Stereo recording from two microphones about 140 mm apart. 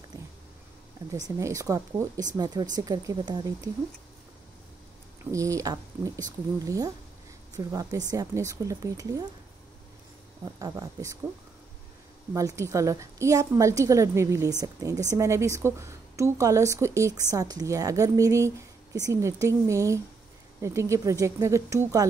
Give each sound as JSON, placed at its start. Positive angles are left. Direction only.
{"t": 1.1, "sound": "a woman's voice", "side_deg": -25}
{"t": 5.2, "sound": "a woman's voice", "side_deg": -20}
{"t": 10.6, "sound": "a woman's voice", "side_deg": -25}
{"t": 12.4, "sound": "a woman's voice", "side_deg": -20}